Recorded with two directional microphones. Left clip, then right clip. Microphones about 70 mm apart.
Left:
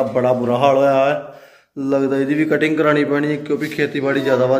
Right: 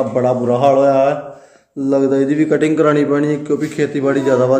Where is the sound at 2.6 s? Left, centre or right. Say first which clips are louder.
Right 2 dB; right.